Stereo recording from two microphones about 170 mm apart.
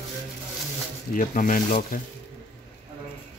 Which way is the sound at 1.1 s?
50° left (ahead or behind).